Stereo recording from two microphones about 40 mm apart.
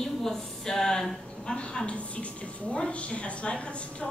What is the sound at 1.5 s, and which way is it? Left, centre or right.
A woman's voice, left.